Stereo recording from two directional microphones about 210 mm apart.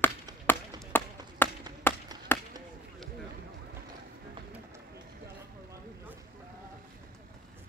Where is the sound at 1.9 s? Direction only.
10° left (ahead or behind).